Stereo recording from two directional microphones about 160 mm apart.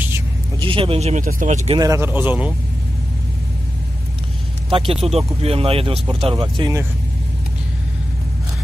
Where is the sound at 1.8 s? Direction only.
15° right (ahead or behind).